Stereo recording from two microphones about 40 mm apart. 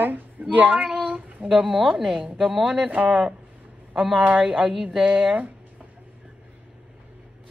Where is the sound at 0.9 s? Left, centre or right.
Right.